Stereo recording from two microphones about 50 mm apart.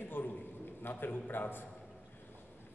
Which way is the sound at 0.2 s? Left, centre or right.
Left.